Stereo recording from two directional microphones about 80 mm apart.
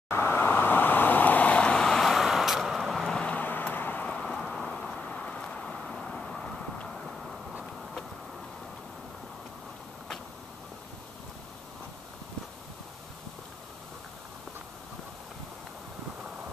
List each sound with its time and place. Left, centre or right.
0.1 s vehicle: left
4.0 s a sound: centre
5.8 s vehicle: centre